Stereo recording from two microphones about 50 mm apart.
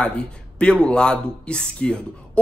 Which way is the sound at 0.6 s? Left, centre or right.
Centre.